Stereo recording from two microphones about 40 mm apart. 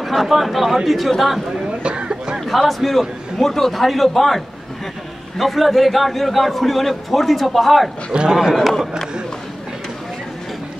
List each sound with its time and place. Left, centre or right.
0.0 s a man's voice: centre
1.8 s a sound: right
2.4 s a man's voice: centre
5.4 s a man's voice: centre
8.1 s a man's voice: right
8.5 s a man's voice: centre